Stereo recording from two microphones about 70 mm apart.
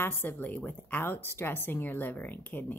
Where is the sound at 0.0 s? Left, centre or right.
Left.